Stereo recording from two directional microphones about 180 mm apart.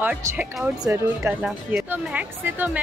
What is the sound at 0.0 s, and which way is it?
Speech, 10° right (ahead or behind).